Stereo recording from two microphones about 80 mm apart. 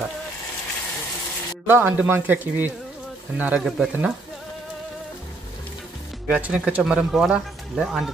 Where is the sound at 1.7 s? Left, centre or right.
Right.